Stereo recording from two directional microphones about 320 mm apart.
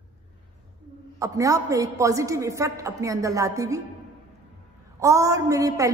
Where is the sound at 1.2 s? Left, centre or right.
Centre.